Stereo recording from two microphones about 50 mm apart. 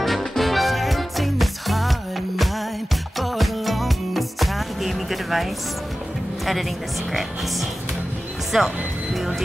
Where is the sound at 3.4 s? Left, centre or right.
Centre.